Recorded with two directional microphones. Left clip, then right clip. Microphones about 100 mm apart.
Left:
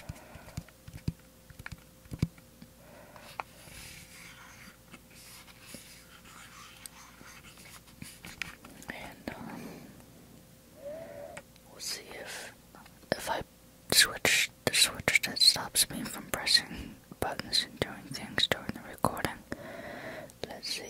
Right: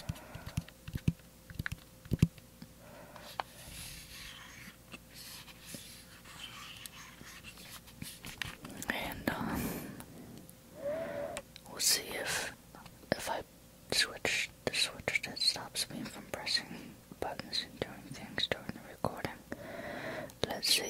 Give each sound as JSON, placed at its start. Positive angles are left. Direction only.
{"t": 0.2, "sound": "horse", "side_deg": 0}
{"t": 3.2, "sound": "a sound", "side_deg": 10}
{"t": 8.7, "sound": "whispering", "side_deg": -20}
{"t": 10.9, "sound": "whispering", "side_deg": -20}
{"t": 12.7, "sound": "whispering", "side_deg": 10}
{"t": 19.7, "sound": "a sound", "side_deg": 0}
{"t": 20.3, "sound": "whispering", "side_deg": -15}